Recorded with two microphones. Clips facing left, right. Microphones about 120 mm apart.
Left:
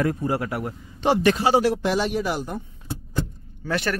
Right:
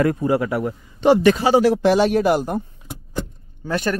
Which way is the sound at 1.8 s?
75° right (ahead or behind).